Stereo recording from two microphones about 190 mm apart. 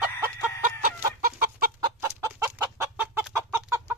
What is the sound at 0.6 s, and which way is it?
Chicken, 50° right (ahead or behind).